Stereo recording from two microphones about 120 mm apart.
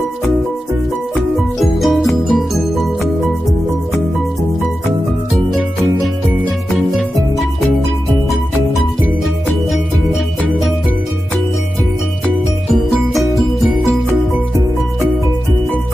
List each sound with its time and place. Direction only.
1.6 s music: centre (ahead or behind)